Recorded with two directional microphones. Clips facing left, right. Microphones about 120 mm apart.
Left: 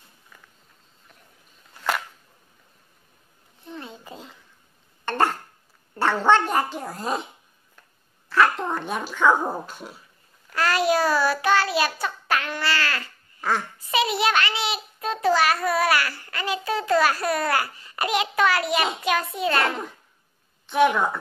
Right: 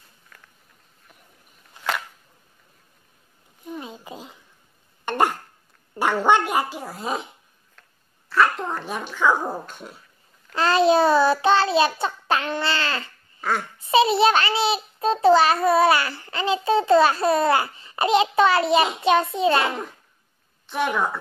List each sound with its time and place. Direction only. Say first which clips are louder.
1.8 s a sound: left 1 dB; 20° right (ahead or behind)
3.6 s a sound: right 3 dB; 15° right (ahead or behind)
5.0 s throat clearing: right 1 dB; 15° right (ahead or behind)
5.9 s speech: even; 10° right (ahead or behind)
8.3 s speech: even; centre (ahead or behind)
10.5 s a child's voice: right 4 dB; 25° right (ahead or behind)
13.4 s speech: even; centre (ahead or behind)
13.7 s a child's voice: right 11 dB; 30° right (ahead or behind)
20.6 s a woman's voice: left 4 dB; centre (ahead or behind)